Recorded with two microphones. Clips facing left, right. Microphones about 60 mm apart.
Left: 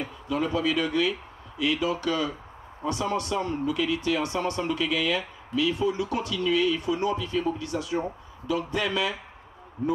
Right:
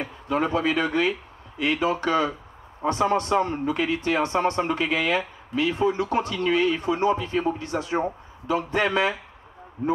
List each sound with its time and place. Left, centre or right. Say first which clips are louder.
0.0 s speech: right 3 dB; right